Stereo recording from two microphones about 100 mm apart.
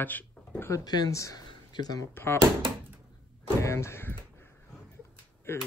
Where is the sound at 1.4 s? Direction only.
45° left (ahead or behind).